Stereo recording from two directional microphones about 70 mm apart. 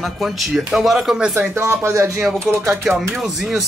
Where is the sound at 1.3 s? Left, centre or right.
Right.